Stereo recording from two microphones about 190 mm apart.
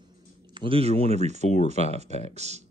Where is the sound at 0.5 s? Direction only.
30° right (ahead or behind).